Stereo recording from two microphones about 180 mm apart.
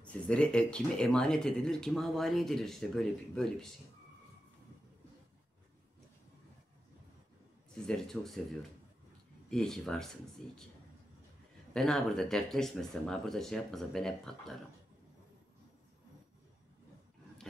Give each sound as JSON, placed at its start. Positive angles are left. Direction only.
{"t": 0.0, "sound": "speech", "side_deg": 5}
{"t": 7.7, "sound": "speech", "side_deg": 5}
{"t": 9.5, "sound": "speech", "side_deg": 5}
{"t": 11.7, "sound": "speech", "side_deg": 0}